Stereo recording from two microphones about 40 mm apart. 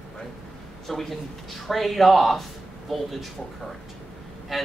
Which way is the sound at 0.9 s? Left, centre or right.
Centre.